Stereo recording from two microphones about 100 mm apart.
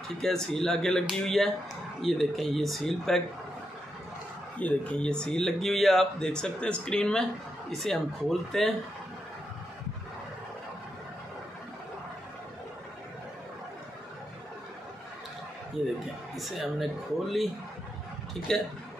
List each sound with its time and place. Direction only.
0.2 s speech: 5° left (ahead or behind)
4.6 s speech: 15° left (ahead or behind)
16.3 s speech: centre (ahead or behind)
18.5 s speech: 5° left (ahead or behind)